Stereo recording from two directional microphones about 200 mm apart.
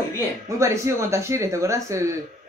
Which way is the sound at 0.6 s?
15° right (ahead or behind).